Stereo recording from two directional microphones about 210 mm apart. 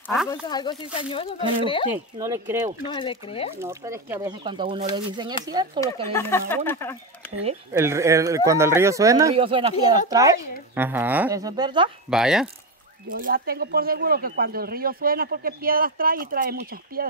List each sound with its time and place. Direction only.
0.0 s a sound: centre (ahead or behind)
0.3 s speech: 20° left (ahead or behind)
1.9 s speech: 15° right (ahead or behind)
2.9 s speech: 25° left (ahead or behind)
3.6 s speech: 15° right (ahead or behind)
6.1 s speech: 10° left (ahead or behind)
7.7 s speech: 15° right (ahead or behind)
9.3 s speech: 25° right (ahead or behind)
12.1 s speech: centre (ahead or behind)
13.1 s speech: 45° right (ahead or behind)